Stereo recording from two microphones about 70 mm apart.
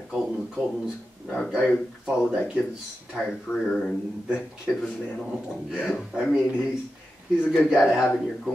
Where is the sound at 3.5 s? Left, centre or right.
Centre.